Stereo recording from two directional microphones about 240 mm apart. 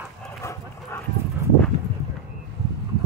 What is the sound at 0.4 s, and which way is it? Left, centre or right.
Dog, centre.